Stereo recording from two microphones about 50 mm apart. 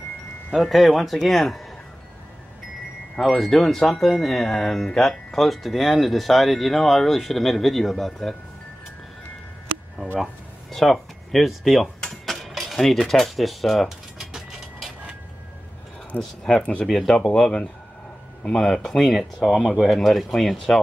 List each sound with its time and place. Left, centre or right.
0.6 s speech: centre
3.2 s speech: centre
10.2 s speech: centre
12.0 s cutlery: centre
16.1 s speech: left
16.8 s speech: centre
17.3 s speech: centre
19.1 s speech: centre